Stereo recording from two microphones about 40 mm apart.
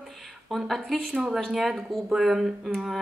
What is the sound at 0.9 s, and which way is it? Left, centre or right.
Speech, right.